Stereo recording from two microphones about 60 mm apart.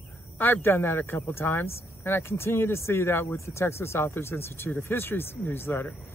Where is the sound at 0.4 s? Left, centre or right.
Left.